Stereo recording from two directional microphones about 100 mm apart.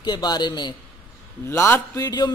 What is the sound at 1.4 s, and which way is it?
Speech, 25° left (ahead or behind).